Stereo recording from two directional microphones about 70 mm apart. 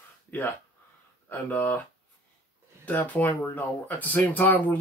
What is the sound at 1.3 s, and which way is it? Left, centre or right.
Speech, left.